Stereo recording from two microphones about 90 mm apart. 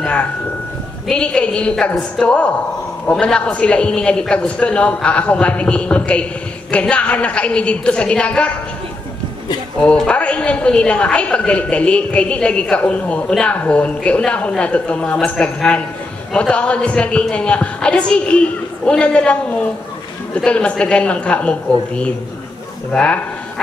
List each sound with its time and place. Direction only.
0.0 s a sound: 15° left (ahead or behind)
1.0 s a woman's voice: 10° left (ahead or behind)
9.8 s a woman's voice: 10° left (ahead or behind)